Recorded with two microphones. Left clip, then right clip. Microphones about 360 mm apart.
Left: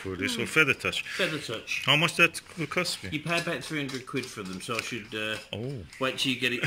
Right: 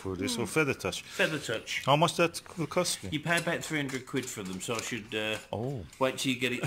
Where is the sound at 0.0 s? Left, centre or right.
Centre.